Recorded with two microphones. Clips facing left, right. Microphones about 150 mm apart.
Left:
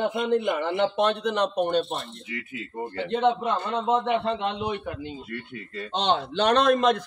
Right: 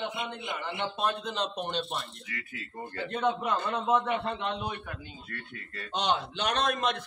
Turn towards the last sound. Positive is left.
turn(degrees=35)  # may be behind; listen again after turning